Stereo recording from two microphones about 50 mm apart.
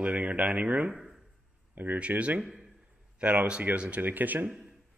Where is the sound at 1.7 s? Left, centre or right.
Right.